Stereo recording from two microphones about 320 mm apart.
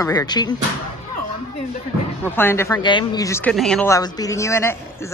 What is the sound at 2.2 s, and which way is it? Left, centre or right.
Speech, centre.